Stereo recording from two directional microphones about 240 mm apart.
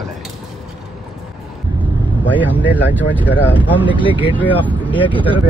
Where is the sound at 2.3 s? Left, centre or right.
Centre.